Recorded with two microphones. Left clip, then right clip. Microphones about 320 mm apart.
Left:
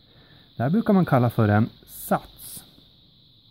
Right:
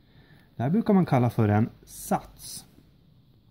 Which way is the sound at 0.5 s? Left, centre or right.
Left.